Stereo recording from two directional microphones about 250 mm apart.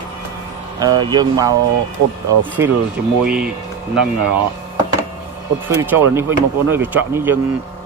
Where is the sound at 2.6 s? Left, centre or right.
Centre.